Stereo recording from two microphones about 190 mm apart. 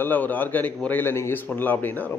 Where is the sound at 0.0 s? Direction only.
10° left (ahead or behind).